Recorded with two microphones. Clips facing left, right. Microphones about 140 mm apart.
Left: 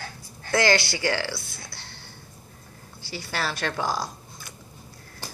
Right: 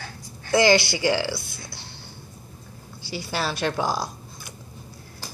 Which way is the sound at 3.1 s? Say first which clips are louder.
Right 2 dB; 15° right (ahead or behind).